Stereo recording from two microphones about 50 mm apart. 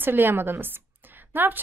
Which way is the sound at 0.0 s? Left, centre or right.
Right.